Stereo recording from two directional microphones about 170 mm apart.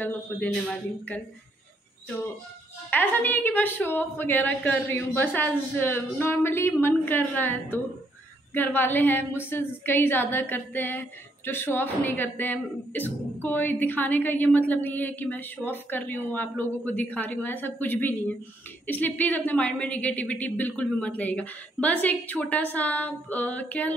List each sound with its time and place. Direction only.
0.0 s a woman's voice: 5° left (ahead or behind)
2.9 s a woman's voice: 10° left (ahead or behind)
8.5 s a woman's voice: 10° left (ahead or behind)